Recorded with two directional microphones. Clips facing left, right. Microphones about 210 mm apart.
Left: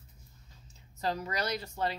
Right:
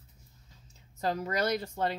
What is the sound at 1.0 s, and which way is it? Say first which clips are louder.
Speech: right 3 dB; 50° right (ahead or behind).